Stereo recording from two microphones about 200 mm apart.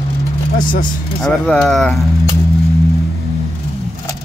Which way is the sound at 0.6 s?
45° left (ahead or behind).